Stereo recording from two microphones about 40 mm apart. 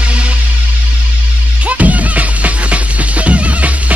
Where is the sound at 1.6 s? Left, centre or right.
Right.